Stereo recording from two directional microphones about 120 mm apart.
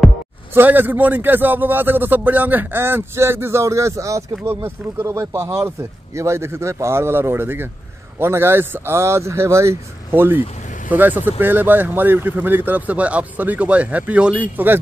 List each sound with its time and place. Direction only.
0.6 s speech: 15° right (ahead or behind)